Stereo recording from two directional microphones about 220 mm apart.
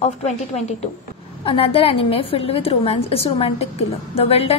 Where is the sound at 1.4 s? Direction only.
25° left (ahead or behind).